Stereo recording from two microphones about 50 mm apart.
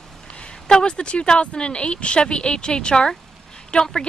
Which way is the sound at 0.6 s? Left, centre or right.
Centre.